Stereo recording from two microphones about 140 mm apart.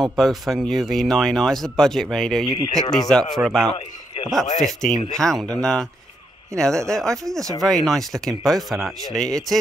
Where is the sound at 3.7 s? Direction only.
45° left (ahead or behind).